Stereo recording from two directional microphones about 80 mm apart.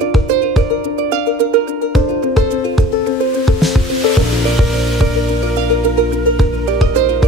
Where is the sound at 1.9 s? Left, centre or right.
Centre.